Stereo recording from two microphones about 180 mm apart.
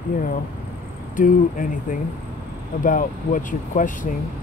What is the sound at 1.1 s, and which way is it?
Speech, 50° left (ahead or behind).